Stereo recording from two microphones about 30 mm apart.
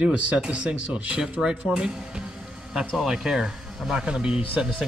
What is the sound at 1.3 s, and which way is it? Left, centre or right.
Speech, right.